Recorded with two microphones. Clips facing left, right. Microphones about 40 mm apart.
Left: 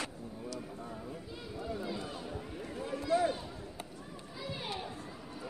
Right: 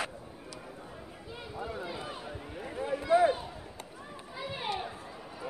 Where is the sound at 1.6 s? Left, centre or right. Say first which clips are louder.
Right 1 dB; right.